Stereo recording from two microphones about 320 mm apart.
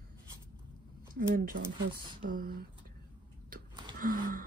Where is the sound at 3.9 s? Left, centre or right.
Right.